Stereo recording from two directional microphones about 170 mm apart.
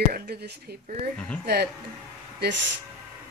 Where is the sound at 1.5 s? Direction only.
75° right (ahead or behind).